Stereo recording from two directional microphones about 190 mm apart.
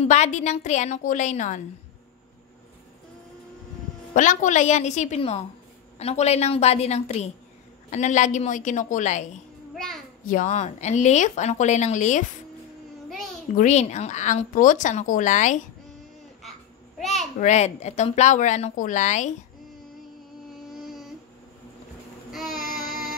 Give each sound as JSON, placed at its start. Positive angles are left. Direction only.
{"t": 0.0, "sound": "a woman's voice", "side_deg": 40}
{"t": 4.1, "sound": "a woman's voice", "side_deg": 40}
{"t": 13.6, "sound": "a woman's voice", "side_deg": 40}
{"t": 17.0, "sound": "a sound", "side_deg": 0}
{"t": 17.4, "sound": "a woman's voice", "side_deg": 35}
{"t": 22.3, "sound": "child singing", "side_deg": 0}